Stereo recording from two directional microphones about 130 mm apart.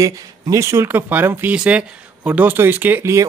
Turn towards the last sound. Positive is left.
turn(degrees=-20)  # may be behind; listen again after turning